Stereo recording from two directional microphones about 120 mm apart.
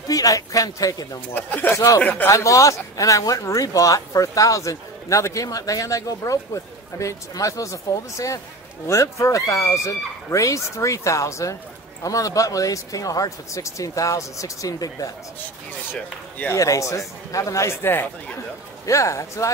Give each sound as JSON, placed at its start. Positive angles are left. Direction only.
{"t": 0.1, "sound": "speech", "side_deg": 30}
{"t": 1.3, "sound": "speech", "side_deg": 15}
{"t": 2.3, "sound": "speech", "side_deg": 25}
{"t": 15.9, "sound": "speech", "side_deg": 15}